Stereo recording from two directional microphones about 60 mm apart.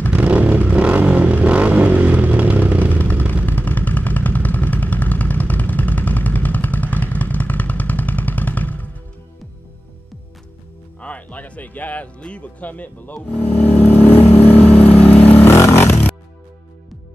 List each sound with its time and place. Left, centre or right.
0.1 s vehicle: right
2.9 s vehicle: left
11.0 s music: left
12.2 s vehicle: left
15.2 s vehicle: left